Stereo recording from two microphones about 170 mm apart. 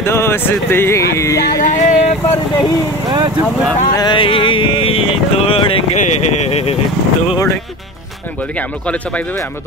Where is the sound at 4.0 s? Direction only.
30° left (ahead or behind).